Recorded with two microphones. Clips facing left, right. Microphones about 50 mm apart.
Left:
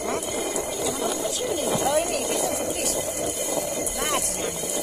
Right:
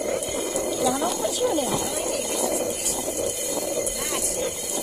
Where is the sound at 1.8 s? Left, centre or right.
Left.